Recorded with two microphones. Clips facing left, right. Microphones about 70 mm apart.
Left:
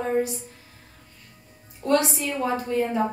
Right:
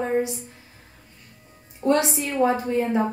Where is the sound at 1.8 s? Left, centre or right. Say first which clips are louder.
Right 1 dB; right.